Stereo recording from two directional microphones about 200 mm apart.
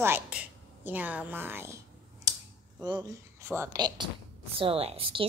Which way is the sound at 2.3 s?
15° right (ahead or behind).